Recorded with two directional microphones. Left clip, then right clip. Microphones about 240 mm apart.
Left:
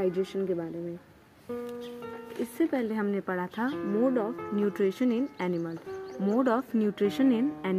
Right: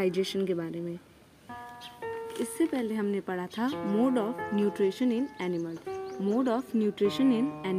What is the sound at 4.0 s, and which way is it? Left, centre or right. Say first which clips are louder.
Speech: left 1 dB; right.